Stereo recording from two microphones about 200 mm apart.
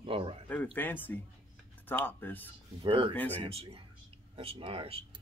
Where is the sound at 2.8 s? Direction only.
25° right (ahead or behind).